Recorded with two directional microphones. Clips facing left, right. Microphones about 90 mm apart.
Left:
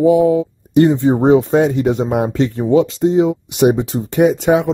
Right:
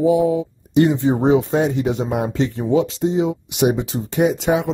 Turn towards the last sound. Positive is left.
turn(degrees=45)  # may be behind; listen again after turning